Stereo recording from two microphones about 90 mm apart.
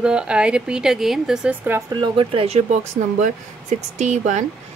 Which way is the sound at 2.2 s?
90° right.